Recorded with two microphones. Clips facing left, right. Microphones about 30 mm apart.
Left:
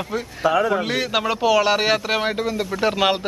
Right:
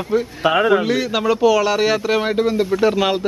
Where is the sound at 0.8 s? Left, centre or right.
Centre.